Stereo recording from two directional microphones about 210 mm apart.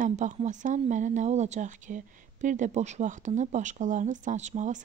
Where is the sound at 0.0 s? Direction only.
35° right (ahead or behind).